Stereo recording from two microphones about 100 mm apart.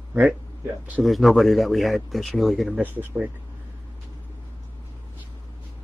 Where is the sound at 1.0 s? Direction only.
Centre (ahead or behind).